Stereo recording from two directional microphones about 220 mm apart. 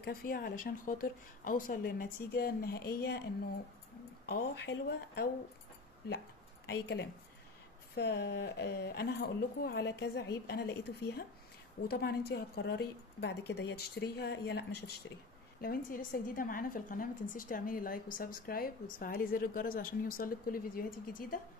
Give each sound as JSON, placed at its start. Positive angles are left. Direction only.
{"t": 0.0, "sound": "a woman's voice", "side_deg": 40}
{"t": 4.3, "sound": "a woman's voice", "side_deg": 45}
{"t": 6.7, "sound": "a woman's voice", "side_deg": 50}